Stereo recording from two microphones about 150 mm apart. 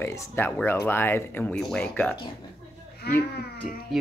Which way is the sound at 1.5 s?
5° left (ahead or behind).